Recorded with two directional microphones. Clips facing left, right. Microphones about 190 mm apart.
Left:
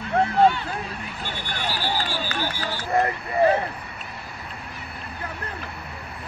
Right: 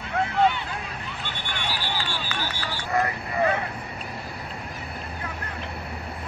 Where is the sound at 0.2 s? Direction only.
40° left (ahead or behind).